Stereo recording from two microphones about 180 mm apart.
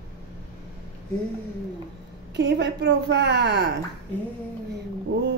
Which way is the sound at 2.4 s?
70° right (ahead or behind).